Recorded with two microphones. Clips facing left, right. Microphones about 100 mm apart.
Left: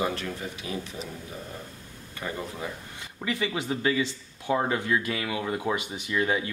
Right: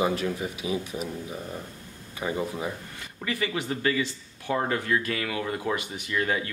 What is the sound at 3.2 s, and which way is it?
Speech, 20° left (ahead or behind).